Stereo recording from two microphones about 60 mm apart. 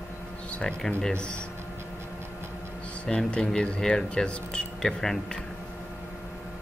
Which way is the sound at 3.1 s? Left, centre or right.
Centre.